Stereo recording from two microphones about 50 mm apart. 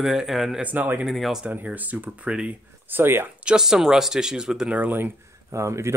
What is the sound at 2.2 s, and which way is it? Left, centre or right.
Speech, right.